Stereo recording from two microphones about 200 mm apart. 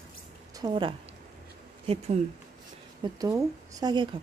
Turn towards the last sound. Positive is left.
turn(degrees=-20)  # may be behind; listen again after turning